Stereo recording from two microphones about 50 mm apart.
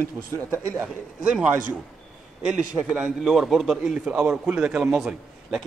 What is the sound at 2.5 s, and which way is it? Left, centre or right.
A man's voice, centre.